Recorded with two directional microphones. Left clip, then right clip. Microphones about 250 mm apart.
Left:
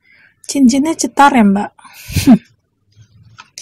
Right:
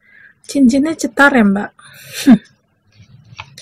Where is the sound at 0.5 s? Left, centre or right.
Left.